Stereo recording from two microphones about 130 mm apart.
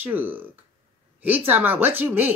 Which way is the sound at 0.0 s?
15° right (ahead or behind).